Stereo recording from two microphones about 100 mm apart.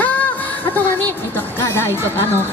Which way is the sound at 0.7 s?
20° left (ahead or behind).